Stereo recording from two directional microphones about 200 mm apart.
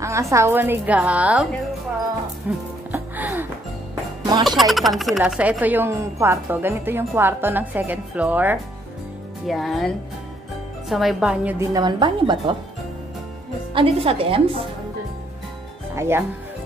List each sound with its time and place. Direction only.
0.0 s speech: 15° right (ahead or behind)
2.9 s music: 10° right (ahead or behind)
4.5 s a woman's voice: centre (ahead or behind)
11.7 s a woman's voice: 20° right (ahead or behind)
13.7 s a woman's voice: 25° right (ahead or behind)
15.9 s speech: 10° right (ahead or behind)